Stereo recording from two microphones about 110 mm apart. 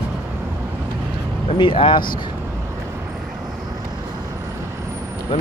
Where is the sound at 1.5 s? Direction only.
50° left (ahead or behind).